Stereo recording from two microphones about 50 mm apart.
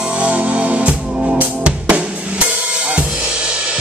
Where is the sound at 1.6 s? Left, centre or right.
Right.